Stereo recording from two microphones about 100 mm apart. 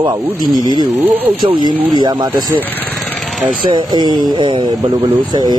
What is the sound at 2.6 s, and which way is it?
Speech, 15° left (ahead or behind).